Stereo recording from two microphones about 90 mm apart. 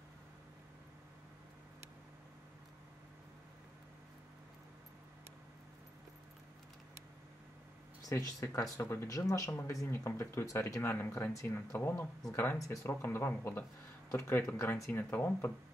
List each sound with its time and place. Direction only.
8.1 s speech: 40° left (ahead or behind); by 15.5 s 20° left (ahead or behind)